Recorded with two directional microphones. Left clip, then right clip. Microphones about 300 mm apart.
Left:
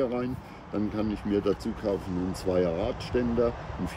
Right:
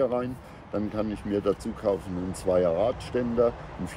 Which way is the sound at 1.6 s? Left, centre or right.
Right.